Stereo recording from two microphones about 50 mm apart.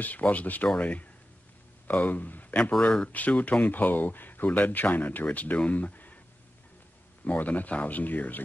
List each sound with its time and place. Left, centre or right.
0.0 s speech: left
2.8 s speech: centre
3.1 s speech: left
7.2 s speech: left